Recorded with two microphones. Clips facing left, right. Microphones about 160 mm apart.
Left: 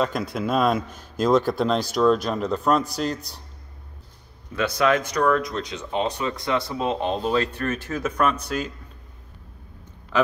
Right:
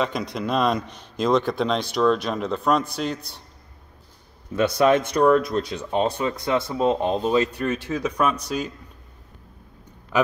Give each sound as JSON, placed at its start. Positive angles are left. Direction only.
{"t": 0.0, "sound": "a man's voice", "side_deg": 0}
{"t": 4.6, "sound": "a man's voice", "side_deg": -25}
{"t": 10.1, "sound": "speech", "side_deg": -15}